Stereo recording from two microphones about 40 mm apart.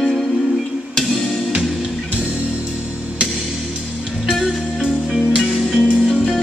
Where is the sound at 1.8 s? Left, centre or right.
Right.